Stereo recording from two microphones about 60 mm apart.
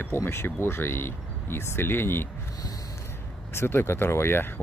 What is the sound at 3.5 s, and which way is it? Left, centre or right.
Speech, left.